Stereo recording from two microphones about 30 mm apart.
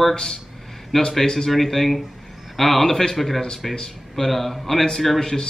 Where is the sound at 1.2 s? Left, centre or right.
Left.